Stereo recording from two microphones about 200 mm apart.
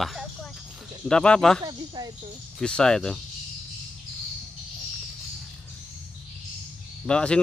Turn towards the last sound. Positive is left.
turn(degrees=5)  # may be behind; listen again after turning